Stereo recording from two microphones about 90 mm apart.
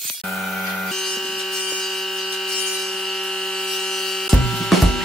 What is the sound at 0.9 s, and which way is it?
Rub, 5° left (ahead or behind).